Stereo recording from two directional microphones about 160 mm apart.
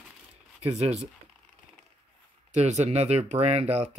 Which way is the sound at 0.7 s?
45° right (ahead or behind).